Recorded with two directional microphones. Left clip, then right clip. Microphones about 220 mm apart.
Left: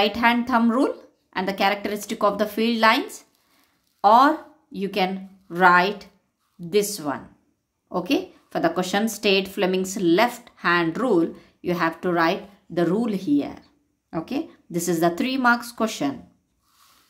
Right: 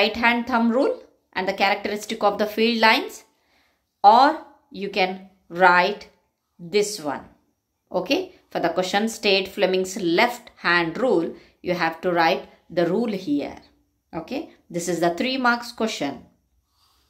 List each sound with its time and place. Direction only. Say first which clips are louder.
0.0 s a woman's voice: even; 15° left (ahead or behind)